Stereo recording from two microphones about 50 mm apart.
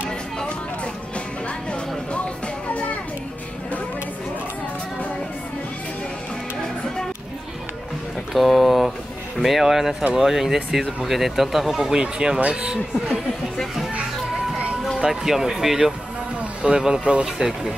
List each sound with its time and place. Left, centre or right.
1.7 s music: left
8.3 s a sound: centre
9.4 s speech: centre
12.0 s a man's voice: centre
15.0 s a man's voice: centre